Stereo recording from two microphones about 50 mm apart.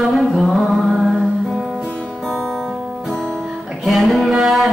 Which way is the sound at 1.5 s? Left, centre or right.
Centre.